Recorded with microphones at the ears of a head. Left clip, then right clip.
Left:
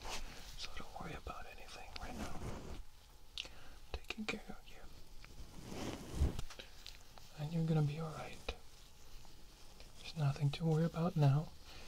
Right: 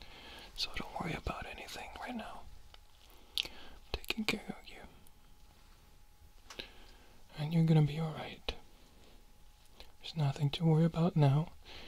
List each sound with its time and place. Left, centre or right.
0.6 s whispering: right
2.4 s a sound: left
3.3 s whispering: right
5.6 s a sound: left
7.3 s whispering: right
10.1 s speech: right